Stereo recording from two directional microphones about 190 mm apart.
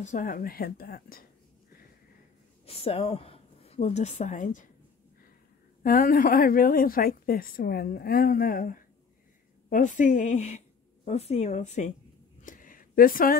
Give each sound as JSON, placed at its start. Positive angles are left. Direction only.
{"t": 0.0, "sound": "a woman's voice", "side_deg": 45}
{"t": 2.6, "sound": "speech", "side_deg": 30}
{"t": 5.8, "sound": "a woman's voice", "side_deg": 50}
{"t": 12.4, "sound": "a sound", "side_deg": 45}